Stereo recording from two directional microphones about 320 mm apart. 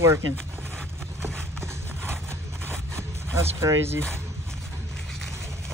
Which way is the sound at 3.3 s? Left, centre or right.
Centre.